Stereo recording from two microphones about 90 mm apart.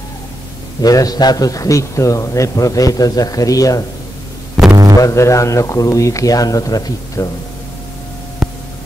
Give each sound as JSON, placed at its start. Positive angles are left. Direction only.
{"t": 0.7, "sound": "a man's voice", "side_deg": 45}
{"t": 4.6, "sound": "a sound", "side_deg": -40}
{"t": 5.0, "sound": "a man's voice", "side_deg": 35}